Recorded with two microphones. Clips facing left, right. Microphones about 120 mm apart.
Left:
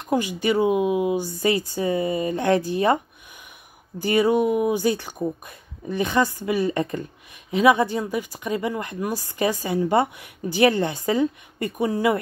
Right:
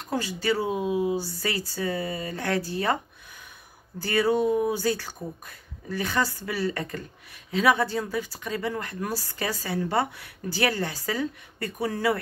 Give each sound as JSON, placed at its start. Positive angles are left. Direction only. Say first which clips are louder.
{"t": 0.0, "sound": "speech", "louder": "left 6 dB", "side_deg": 15}
{"t": 4.0, "sound": "speech", "louder": "left 4 dB", "side_deg": 20}